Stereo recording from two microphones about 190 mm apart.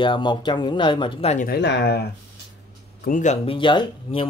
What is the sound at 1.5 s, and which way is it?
Speech, 65° left (ahead or behind).